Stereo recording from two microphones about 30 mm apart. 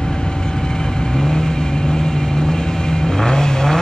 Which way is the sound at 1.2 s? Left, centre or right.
Left.